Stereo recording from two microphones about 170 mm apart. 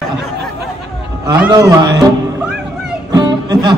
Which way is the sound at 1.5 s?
20° right (ahead or behind).